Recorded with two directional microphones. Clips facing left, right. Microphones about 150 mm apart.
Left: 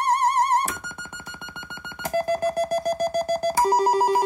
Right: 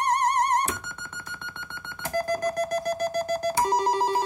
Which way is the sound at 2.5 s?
10° left (ahead or behind).